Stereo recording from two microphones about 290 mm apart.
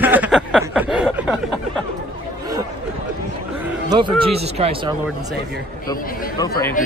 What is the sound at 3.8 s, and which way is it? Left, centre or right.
Speech, centre.